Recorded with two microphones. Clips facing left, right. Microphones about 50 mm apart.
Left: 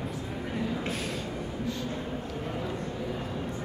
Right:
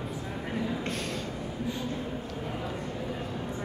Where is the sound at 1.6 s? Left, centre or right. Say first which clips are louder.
Right 1 dB; centre.